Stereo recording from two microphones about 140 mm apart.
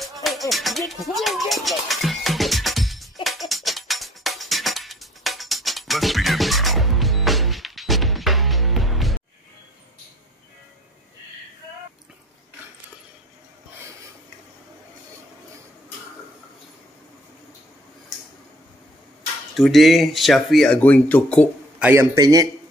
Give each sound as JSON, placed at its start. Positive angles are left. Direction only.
{"t": 0.0, "sound": "music", "side_deg": 0}
{"t": 19.5, "sound": "speech", "side_deg": 0}
{"t": 21.7, "sound": "a man's voice", "side_deg": -15}